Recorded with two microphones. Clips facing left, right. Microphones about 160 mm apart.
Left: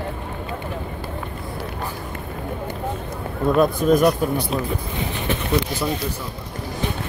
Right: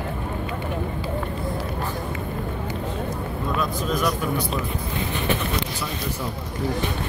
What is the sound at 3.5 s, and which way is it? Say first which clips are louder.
Speech: left 10 dB; 50° left (ahead or behind).